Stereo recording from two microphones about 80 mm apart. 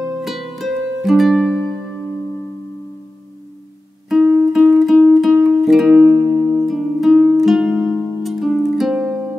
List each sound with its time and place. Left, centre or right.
0.2 s music: centre
4.5 s music: centre
6.0 s music: right
6.6 s music: centre